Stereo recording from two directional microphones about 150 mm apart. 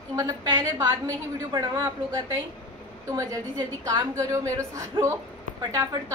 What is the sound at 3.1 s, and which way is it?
A woman's voice, 25° right (ahead or behind).